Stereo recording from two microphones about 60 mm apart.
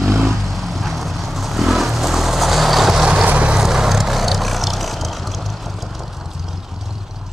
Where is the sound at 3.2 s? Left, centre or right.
Right.